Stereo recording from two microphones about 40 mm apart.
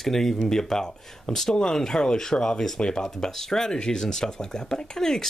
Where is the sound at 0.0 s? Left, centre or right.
Centre.